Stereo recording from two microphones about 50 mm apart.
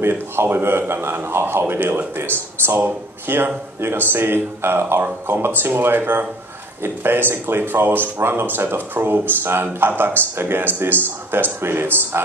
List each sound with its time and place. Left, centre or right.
0.0 s speech: right